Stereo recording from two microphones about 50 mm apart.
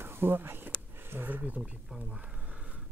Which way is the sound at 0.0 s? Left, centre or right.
Right.